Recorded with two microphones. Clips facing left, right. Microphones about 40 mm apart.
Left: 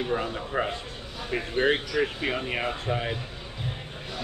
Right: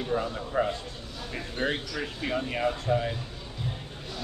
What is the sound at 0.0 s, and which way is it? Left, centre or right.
Speech, left.